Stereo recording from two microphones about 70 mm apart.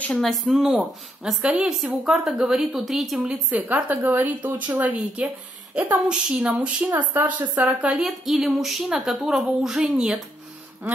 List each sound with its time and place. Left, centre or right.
0.2 s a woman's voice: centre
3.4 s a woman's voice: right
8.0 s a woman's voice: centre